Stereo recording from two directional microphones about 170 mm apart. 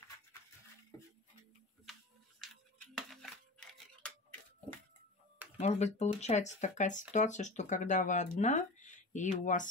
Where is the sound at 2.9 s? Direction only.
Centre (ahead or behind).